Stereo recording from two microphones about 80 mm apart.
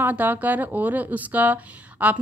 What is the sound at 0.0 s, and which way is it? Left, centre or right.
Speech, right.